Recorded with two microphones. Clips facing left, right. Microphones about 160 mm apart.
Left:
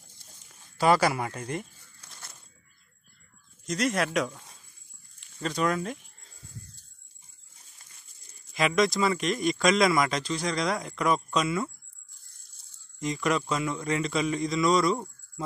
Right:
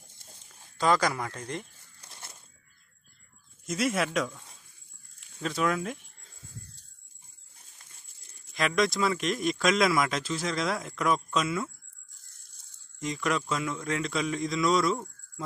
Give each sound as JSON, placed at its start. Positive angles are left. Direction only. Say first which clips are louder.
{"t": 0.7, "sound": "speech", "louder": "left 3 dB", "side_deg": 10}
{"t": 2.0, "sound": "coin", "louder": "right 1 dB", "side_deg": -25}
{"t": 3.6, "sound": "speech", "louder": "left 1 dB", "side_deg": -5}
{"t": 4.4, "sound": "a sound", "louder": "left 1 dB", "side_deg": 0}
{"t": 5.2, "sound": "speech", "louder": "left 1 dB", "side_deg": 0}
{"t": 8.5, "sound": "speech", "louder": "left 2 dB", "side_deg": 0}
{"t": 13.0, "sound": "speech", "louder": "left 2 dB", "side_deg": 0}